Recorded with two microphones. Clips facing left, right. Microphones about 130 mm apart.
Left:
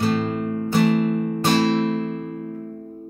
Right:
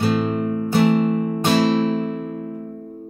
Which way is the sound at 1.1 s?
45° right (ahead or behind).